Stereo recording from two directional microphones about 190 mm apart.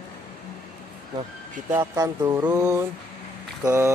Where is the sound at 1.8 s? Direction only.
15° right (ahead or behind).